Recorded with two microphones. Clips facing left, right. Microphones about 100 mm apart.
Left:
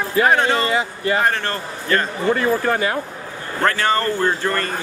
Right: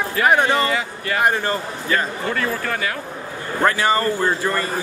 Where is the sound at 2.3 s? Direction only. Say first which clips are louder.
Left 7 dB; 25° left (ahead or behind).